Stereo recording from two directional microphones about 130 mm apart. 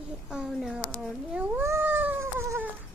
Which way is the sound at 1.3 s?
15° right (ahead or behind).